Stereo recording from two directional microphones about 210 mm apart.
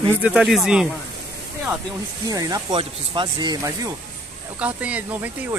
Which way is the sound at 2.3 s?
15° right (ahead or behind).